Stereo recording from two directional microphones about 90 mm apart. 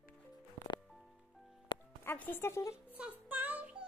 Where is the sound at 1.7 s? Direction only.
70° left (ahead or behind).